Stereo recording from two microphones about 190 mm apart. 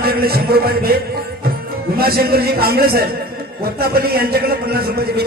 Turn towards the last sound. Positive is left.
turn(degrees=-55)  # may be behind; listen again after turning